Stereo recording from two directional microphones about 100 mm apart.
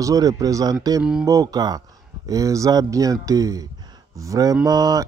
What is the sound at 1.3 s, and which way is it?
Speech, 40° right (ahead or behind).